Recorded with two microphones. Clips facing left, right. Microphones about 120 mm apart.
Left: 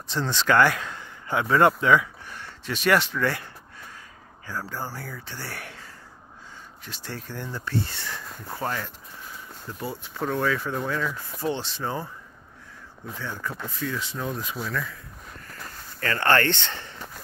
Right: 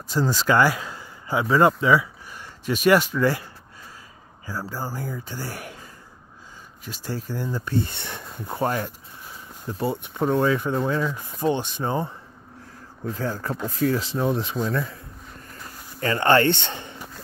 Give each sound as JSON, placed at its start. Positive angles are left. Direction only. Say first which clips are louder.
{"t": 0.1, "sound": "speech", "louder": "right 2 dB", "side_deg": -10}
{"t": 4.5, "sound": "speech", "louder": "right 2 dB", "side_deg": -10}
{"t": 6.9, "sound": "speech", "louder": "right 6 dB", "side_deg": -15}
{"t": 13.1, "sound": "speech", "louder": "right 6 dB", "side_deg": -40}
{"t": 16.0, "sound": "speech", "louder": "right 4 dB", "side_deg": -20}